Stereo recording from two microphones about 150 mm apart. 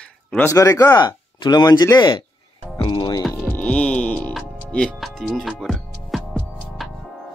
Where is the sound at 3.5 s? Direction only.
10° left (ahead or behind).